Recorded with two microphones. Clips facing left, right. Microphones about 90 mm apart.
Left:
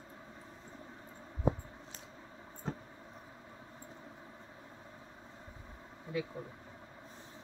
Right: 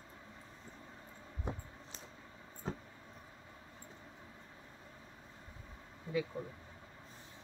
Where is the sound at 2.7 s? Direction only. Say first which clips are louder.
Left 1 dB; 5° right (ahead or behind).